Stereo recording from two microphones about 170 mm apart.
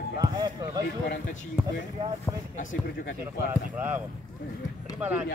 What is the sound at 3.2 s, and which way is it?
Speech, 10° right (ahead or behind).